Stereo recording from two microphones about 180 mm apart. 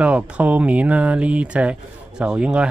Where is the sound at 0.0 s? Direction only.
10° right (ahead or behind).